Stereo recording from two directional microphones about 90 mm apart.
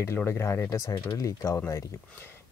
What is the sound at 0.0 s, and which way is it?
Speech, 25° left (ahead or behind).